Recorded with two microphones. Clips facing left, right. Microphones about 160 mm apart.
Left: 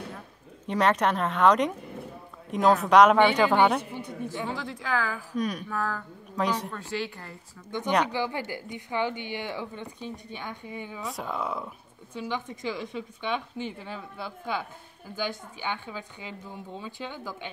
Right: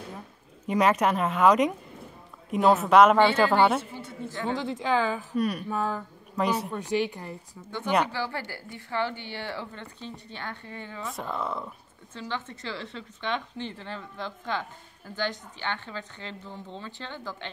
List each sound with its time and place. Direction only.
0.7 s speech: 5° right (ahead or behind)
3.9 s a sound: 15° left (ahead or behind)
4.5 s speech: 20° right (ahead or behind)
5.3 s speech: 5° right (ahead or behind)
5.7 s speech: 20° right (ahead or behind)
6.3 s speech: 10° right (ahead or behind)
8.1 s speech: 15° left (ahead or behind)
11.0 s speech: centre (ahead or behind)